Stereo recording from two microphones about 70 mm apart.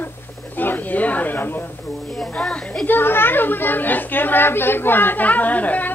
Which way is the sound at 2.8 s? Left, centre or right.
Left.